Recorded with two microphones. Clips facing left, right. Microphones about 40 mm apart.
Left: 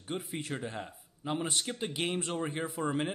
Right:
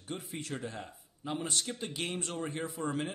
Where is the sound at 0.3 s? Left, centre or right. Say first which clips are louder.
Left 2 dB; centre.